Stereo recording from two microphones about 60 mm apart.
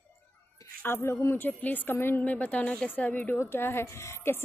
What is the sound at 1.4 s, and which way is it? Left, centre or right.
Speech, left.